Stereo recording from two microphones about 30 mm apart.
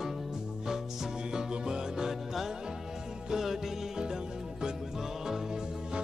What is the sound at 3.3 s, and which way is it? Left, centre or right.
Music, centre.